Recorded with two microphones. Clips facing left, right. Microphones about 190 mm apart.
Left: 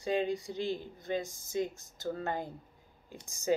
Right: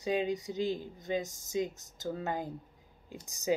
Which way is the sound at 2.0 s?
10° right (ahead or behind).